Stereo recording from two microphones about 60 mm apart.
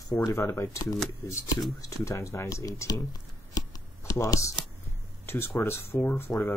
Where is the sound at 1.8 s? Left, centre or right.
Left.